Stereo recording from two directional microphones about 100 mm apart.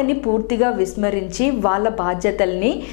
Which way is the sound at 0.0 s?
15° left (ahead or behind).